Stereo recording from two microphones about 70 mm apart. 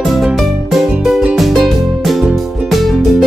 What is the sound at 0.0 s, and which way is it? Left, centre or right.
Music, centre.